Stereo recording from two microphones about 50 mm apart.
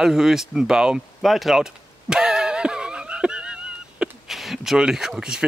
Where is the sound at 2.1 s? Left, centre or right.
Centre.